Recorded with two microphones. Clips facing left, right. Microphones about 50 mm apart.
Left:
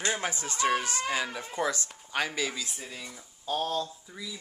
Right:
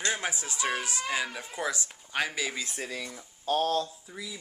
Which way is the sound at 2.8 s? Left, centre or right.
Right.